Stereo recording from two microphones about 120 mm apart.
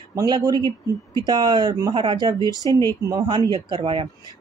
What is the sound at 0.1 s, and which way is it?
Speech, 35° right (ahead or behind).